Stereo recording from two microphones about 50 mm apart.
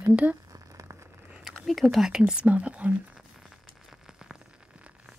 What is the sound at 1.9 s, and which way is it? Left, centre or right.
Speech, centre.